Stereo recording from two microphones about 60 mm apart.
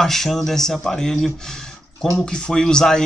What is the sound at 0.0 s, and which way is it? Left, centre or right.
A man's voice, centre.